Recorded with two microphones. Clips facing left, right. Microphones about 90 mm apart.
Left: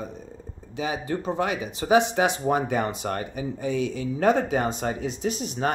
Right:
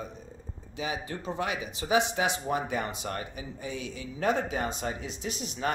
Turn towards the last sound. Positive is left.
turn(degrees=45)  # may be behind; listen again after turning